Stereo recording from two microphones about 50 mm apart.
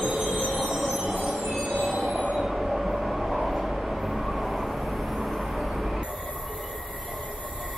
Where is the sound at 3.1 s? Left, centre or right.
Centre.